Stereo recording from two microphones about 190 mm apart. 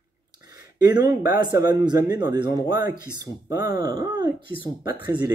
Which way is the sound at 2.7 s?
50° left (ahead or behind).